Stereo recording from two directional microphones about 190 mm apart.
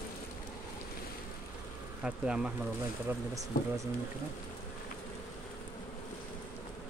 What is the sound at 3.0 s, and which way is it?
Speech, 15° right (ahead or behind).